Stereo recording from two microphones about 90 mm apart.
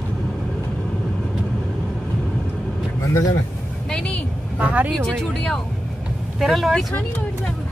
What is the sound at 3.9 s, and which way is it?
Vehicle, 15° left (ahead or behind).